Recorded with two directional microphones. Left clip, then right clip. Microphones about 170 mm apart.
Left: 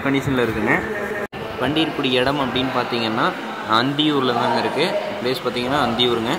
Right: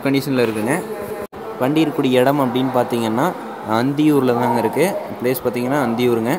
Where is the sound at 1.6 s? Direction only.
45° right (ahead or behind).